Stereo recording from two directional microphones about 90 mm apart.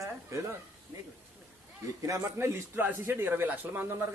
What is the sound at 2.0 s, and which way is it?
A man's voice, 35° right (ahead or behind).